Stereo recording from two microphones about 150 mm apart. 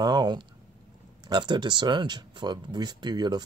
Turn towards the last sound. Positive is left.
turn(degrees=-30)  # may be behind; listen again after turning